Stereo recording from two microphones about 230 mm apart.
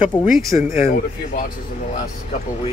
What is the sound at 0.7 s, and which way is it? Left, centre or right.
Speech, left.